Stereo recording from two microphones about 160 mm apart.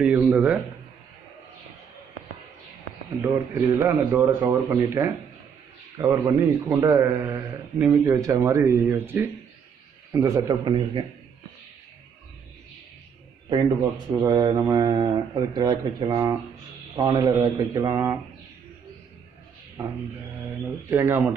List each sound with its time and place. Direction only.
0.0 s a man's voice: 10° right (ahead or behind)
3.2 s a man's voice: 15° right (ahead or behind)
13.5 s speech: 25° right (ahead or behind)
20.9 s a man's voice: 15° right (ahead or behind)